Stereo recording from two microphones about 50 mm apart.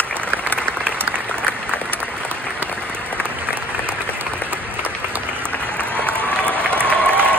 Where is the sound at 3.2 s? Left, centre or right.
Right.